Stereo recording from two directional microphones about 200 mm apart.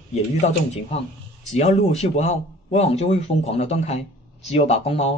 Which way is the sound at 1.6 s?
35° left (ahead or behind).